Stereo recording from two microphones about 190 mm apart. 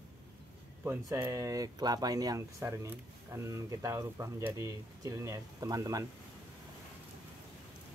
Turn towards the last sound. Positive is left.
turn(degrees=-20)  # may be behind; listen again after turning